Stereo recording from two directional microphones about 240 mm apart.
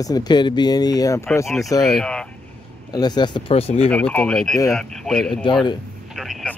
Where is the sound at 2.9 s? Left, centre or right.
Centre.